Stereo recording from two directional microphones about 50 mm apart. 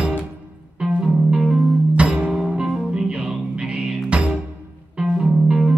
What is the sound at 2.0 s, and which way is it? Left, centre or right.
Music, right.